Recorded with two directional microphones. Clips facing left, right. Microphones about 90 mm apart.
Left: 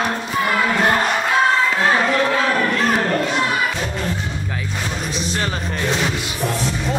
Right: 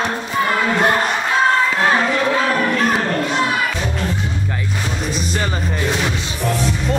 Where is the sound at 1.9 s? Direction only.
5° right (ahead or behind).